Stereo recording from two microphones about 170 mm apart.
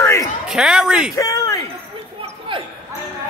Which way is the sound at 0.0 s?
15° left (ahead or behind).